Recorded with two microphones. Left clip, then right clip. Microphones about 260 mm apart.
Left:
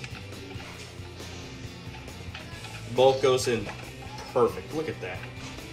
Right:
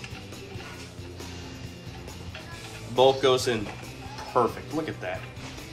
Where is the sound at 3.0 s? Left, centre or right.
Centre.